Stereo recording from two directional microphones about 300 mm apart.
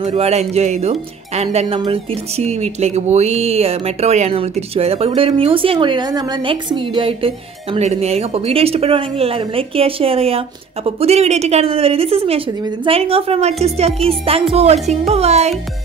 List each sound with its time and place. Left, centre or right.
0.0 s speech: right